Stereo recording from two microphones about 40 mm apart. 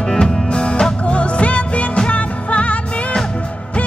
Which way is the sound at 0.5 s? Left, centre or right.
Left.